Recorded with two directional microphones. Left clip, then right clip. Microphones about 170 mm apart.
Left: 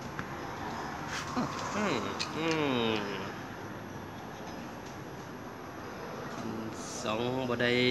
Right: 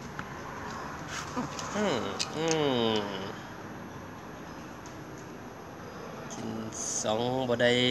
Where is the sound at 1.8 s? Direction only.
50° right (ahead or behind).